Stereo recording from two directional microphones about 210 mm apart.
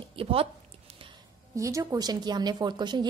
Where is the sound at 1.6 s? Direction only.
15° right (ahead or behind).